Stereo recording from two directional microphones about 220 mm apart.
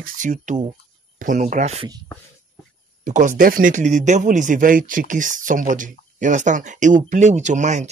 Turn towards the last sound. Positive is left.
turn(degrees=-30)  # may be behind; listen again after turning